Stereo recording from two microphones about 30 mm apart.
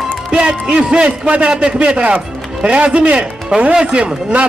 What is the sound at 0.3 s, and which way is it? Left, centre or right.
A man's voice, right.